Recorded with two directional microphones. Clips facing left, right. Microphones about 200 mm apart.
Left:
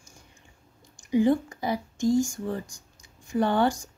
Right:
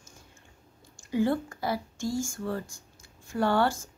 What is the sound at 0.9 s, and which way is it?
A woman's voice, 15° left (ahead or behind).